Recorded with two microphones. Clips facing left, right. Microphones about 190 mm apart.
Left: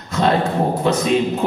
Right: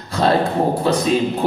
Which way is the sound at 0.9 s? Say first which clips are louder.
Left 1 dB; 35° right (ahead or behind).